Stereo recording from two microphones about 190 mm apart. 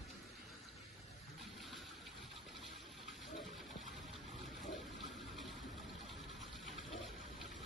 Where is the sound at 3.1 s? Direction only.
Centre (ahead or behind).